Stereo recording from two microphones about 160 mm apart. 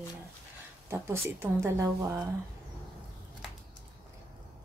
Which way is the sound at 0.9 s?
15° right (ahead or behind).